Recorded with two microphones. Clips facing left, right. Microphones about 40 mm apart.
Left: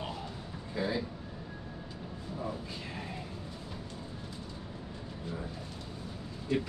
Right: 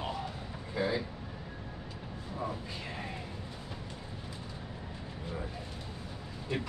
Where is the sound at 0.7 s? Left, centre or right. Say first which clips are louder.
Right 1 dB; centre.